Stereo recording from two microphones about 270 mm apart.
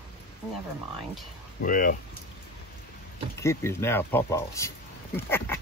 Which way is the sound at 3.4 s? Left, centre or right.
Centre.